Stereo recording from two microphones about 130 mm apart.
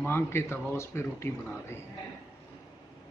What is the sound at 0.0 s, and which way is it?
Speech, 20° left (ahead or behind).